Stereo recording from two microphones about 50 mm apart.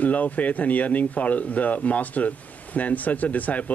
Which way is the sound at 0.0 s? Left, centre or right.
Left.